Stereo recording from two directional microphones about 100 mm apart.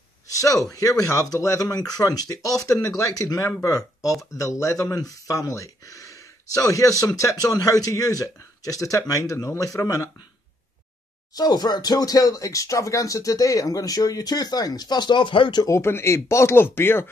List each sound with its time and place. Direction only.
0.3 s speech: 35° left (ahead or behind)
11.3 s speech: 40° left (ahead or behind)
15.6 s speech: 30° left (ahead or behind)